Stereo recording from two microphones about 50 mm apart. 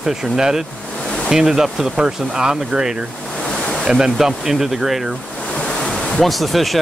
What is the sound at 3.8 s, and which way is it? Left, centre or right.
Speech, centre.